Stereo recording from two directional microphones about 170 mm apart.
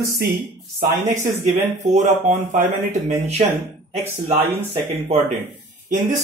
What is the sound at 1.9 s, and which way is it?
Speech, 45° right (ahead or behind).